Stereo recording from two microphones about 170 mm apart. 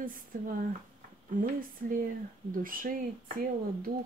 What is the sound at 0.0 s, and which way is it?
Speech, 55° right (ahead or behind).